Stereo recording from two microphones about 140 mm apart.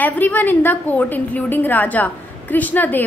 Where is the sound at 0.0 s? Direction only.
10° left (ahead or behind).